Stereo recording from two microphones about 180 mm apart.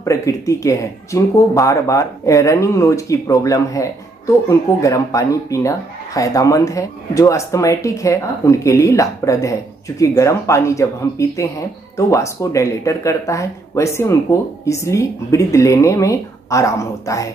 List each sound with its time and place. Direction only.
0.0 s speech: 20° left (ahead or behind)